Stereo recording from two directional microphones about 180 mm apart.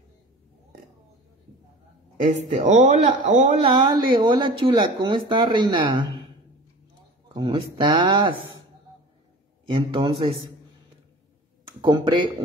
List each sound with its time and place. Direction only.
2.2 s a man's voice: 40° right (ahead or behind)
3.6 s speech: 25° right (ahead or behind)
7.3 s speech: 25° right (ahead or behind)
9.7 s a man's voice: 30° right (ahead or behind)
11.6 s speech: 25° right (ahead or behind)